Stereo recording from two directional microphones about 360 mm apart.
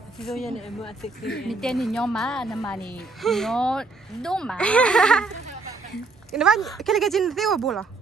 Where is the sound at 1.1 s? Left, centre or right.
Left.